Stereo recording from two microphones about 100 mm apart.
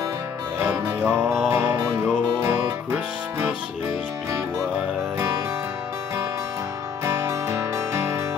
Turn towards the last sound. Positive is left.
turn(degrees=-30)  # may be behind; listen again after turning